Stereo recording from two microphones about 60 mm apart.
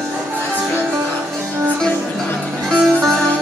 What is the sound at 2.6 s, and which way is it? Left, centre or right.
Music, centre.